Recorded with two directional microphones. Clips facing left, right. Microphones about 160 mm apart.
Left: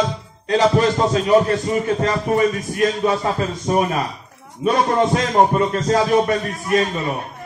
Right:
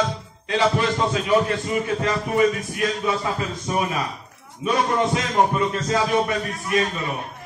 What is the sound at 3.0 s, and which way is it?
A man's voice, 45° left (ahead or behind).